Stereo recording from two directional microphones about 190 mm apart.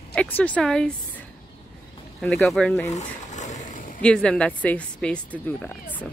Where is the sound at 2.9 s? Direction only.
40° left (ahead or behind).